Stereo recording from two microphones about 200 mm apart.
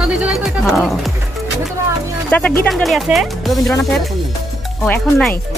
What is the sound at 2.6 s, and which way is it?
Speech, centre (ahead or behind).